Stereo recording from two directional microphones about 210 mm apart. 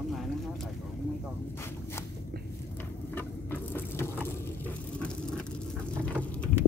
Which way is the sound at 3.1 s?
10° left (ahead or behind).